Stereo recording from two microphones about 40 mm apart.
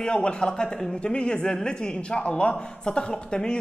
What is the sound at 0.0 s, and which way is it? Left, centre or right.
Speech, left.